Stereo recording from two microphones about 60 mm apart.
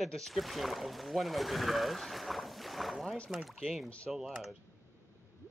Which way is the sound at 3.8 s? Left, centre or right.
Left.